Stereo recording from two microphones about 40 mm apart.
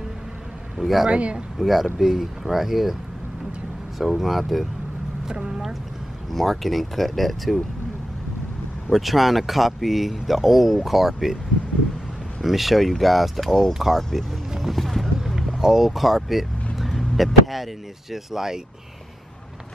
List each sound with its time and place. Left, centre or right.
0.7 s a man's voice: centre
1.1 s speech: right
1.6 s speech: centre
4.0 s speech: centre
5.3 s speech: right
6.3 s speech: centre
8.9 s speech: centre
12.4 s speech: centre
14.6 s a sound: centre
15.6 s speech: centre
16.7 s vehicle: centre
18.1 s speech: centre